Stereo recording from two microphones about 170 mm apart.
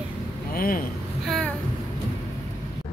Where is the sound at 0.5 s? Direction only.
55° left (ahead or behind).